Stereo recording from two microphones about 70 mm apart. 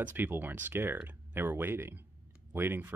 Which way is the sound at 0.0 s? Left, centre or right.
Right.